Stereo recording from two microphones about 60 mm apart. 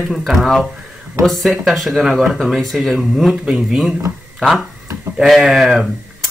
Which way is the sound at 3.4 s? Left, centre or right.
Centre.